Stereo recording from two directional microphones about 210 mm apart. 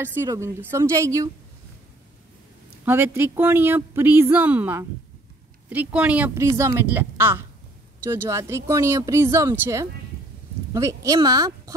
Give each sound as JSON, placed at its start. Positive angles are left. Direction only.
{"t": 0.0, "sound": "speech", "side_deg": -10}
{"t": 2.8, "sound": "speech", "side_deg": -10}